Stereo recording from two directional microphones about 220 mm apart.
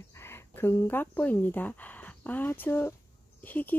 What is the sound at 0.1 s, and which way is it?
A woman's voice, 10° left (ahead or behind).